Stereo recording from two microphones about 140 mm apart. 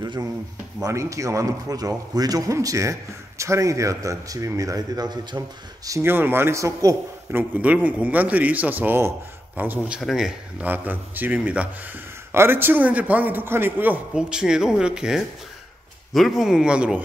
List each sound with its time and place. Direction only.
0.0 s a man's voice: 30° right (ahead or behind)
5.9 s a man's voice: 20° right (ahead or behind)
7.5 s a man's voice: 10° right (ahead or behind)